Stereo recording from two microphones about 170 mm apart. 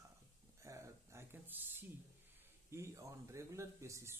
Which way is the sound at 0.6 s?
20° right (ahead or behind).